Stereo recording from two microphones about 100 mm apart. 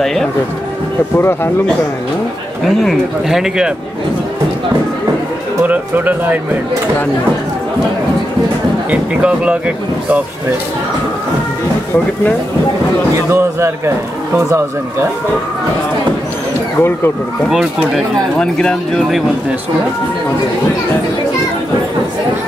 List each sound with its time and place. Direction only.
0.0 s speech: 5° left (ahead or behind)
1.1 s speech: 25° left (ahead or behind)
2.6 s speech: centre (ahead or behind)
5.7 s speech: 20° right (ahead or behind)
8.9 s speech: 10° right (ahead or behind)
13.3 s a man's voice: 25° right (ahead or behind)
17.5 s speech: 5° right (ahead or behind)
18.4 s speech: 5° left (ahead or behind)